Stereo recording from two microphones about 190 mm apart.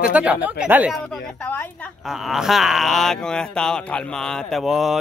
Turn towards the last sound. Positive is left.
turn(degrees=0)  # may be behind; listen again after turning